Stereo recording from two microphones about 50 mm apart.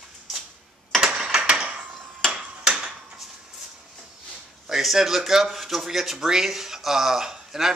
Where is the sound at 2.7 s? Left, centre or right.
Centre.